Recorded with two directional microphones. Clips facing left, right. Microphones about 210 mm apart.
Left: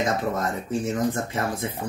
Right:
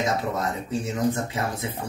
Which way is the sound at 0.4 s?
50° left (ahead or behind).